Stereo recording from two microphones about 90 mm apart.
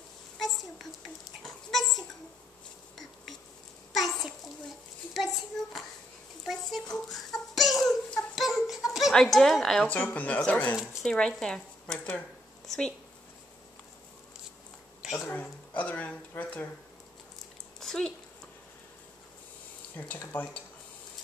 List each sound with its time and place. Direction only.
0.4 s a sound: centre (ahead or behind)
3.9 s a sound: centre (ahead or behind)
8.9 s a woman's voice: centre (ahead or behind)
9.8 s speech: 20° left (ahead or behind)
10.8 s speech: 5° right (ahead or behind)
11.1 s speech: 10° left (ahead or behind)
15.2 s speech: 20° left (ahead or behind)
17.7 s a sound: 5° left (ahead or behind)
20.0 s speech: 20° left (ahead or behind)